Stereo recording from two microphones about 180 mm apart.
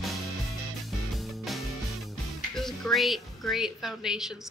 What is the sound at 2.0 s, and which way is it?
Speech, centre (ahead or behind).